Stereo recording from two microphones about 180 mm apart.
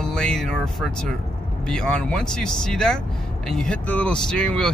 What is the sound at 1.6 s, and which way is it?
Speech, 5° left (ahead or behind).